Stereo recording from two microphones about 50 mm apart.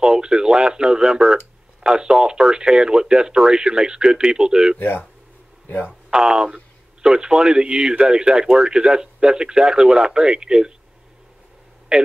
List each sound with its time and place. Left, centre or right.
0.0 s speech: centre
4.7 s speech: left
5.9 s speech: centre